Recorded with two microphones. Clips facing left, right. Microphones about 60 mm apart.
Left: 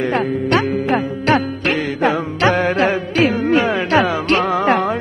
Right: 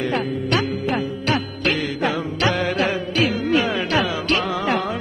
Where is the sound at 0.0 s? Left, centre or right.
Left.